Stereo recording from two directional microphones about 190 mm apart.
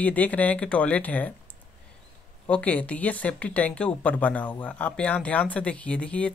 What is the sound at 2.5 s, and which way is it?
Speech, 5° left (ahead or behind).